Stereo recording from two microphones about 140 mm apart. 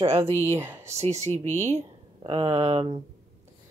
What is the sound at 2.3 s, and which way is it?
Speech, 35° right (ahead or behind).